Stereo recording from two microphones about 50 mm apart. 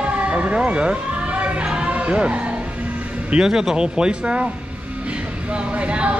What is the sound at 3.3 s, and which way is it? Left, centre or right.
Speech, centre.